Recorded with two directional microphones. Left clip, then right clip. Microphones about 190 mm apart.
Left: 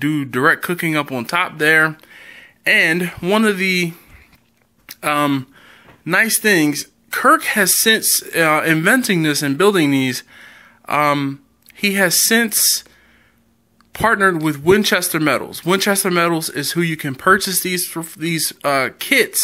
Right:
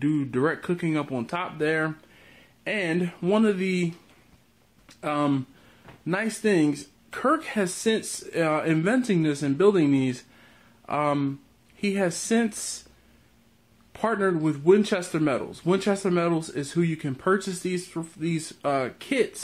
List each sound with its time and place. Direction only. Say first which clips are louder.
0.0 s speech: left 9 dB; 15° left (ahead or behind)
13.9 s speech: left 10 dB; 15° left (ahead or behind)